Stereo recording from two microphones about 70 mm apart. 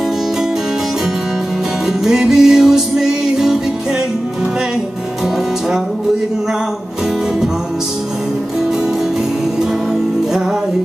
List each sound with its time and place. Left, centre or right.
1.9 s music: centre